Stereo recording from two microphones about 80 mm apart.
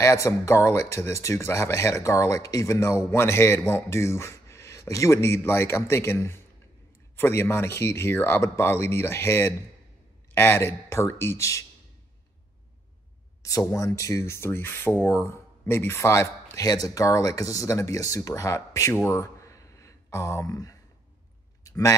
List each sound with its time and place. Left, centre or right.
0.0 s speech: left
13.4 s speech: left
18.9 s a sound: left